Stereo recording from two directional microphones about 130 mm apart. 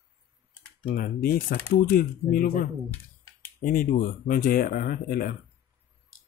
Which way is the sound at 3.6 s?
90° left.